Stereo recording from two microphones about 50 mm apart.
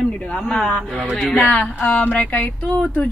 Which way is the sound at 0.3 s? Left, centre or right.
Left.